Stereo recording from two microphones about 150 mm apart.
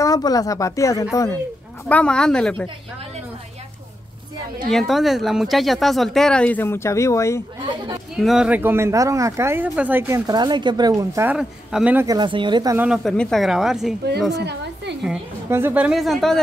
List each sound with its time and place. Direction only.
0.0 s speech: 25° left (ahead or behind)
1.9 s a woman's voice: 10° left (ahead or behind)
4.6 s speech: centre (ahead or behind); by 7.4 s 20° left (ahead or behind)
7.6 s speech: 30° right (ahead or behind)
8.2 s speech: centre (ahead or behind); by 11.3 s 20° right (ahead or behind)
11.3 s speech: 5° right (ahead or behind)
12.1 s speech: 30° right (ahead or behind)
12.7 s speech: 5° right (ahead or behind)
15.5 s speech: 10° right (ahead or behind)